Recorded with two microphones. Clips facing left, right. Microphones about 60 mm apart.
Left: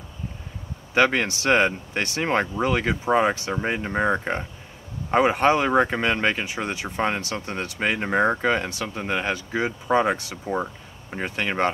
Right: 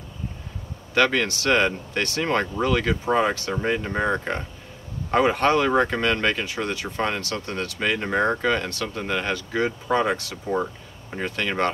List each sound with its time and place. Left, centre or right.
0.9 s speech: left
10.4 s speech: centre
11.1 s speech: left